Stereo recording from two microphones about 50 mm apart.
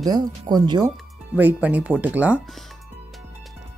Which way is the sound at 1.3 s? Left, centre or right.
Right.